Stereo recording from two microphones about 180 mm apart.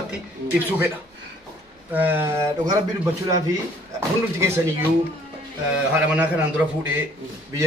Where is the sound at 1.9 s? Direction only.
10° right (ahead or behind).